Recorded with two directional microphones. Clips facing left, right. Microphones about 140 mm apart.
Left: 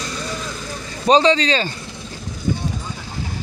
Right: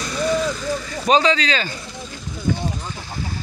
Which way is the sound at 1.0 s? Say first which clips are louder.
Left 3 dB; 30° left (ahead or behind).